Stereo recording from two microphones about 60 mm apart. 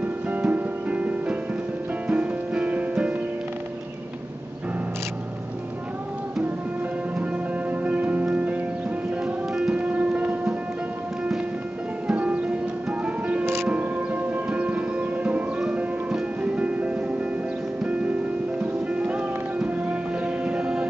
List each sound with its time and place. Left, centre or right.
0.0 s music: right
7.8 s music: right
9.2 s music: centre
9.8 s music: right
12.1 s music: centre
18.6 s music: right